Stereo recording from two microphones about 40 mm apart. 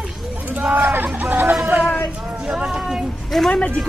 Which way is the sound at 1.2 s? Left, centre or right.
Right.